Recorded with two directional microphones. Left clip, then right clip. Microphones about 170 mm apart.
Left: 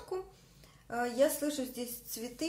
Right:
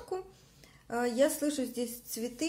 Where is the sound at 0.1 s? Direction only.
15° right (ahead or behind).